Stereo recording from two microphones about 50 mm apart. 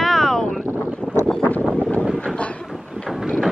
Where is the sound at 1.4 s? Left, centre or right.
Left.